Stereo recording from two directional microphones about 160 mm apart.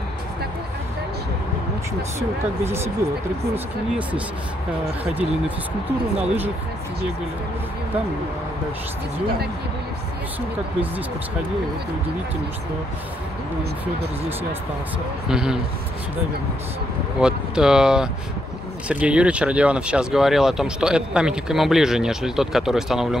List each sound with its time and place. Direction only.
2.1 s speech: 15° right (ahead or behind)
15.2 s speech: 5° right (ahead or behind)
17.2 s speech: 5° right (ahead or behind)